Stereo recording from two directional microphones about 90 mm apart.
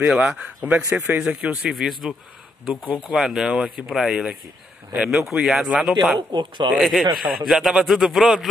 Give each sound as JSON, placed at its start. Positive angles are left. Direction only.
{"t": 0.0, "sound": "a man's voice", "side_deg": -5}
{"t": 2.7, "sound": "speech", "side_deg": -15}
{"t": 3.2, "sound": "a man's voice", "side_deg": -5}
{"t": 6.1, "sound": "speech", "side_deg": -55}
{"t": 6.7, "sound": "a man's voice", "side_deg": 0}